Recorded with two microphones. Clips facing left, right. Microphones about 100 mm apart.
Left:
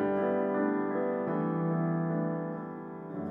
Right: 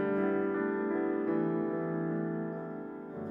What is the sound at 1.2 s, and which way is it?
Music, 40° left (ahead or behind).